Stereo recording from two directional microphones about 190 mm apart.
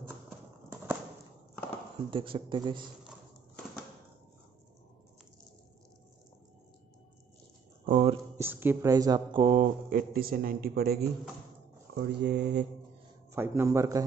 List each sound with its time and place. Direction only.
2.0 s speech: 25° right (ahead or behind)
7.8 s speech: 35° right (ahead or behind)
8.4 s speech: 10° right (ahead or behind); by 9.7 s 30° right (ahead or behind)
9.8 s a man's voice: 50° right (ahead or behind)
13.3 s a man's voice: 15° right (ahead or behind)